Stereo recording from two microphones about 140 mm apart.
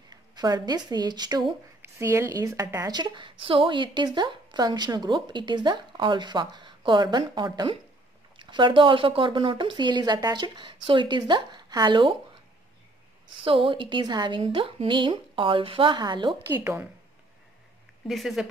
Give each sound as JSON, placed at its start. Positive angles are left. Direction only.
{"t": 0.1, "sound": "speech", "side_deg": -30}
{"t": 1.8, "sound": "a woman's voice", "side_deg": -20}
{"t": 13.4, "sound": "a woman's voice", "side_deg": -40}
{"t": 14.4, "sound": "a woman's voice", "side_deg": -40}
{"t": 16.3, "sound": "a woman's voice", "side_deg": -15}
{"t": 18.0, "sound": "speech", "side_deg": 0}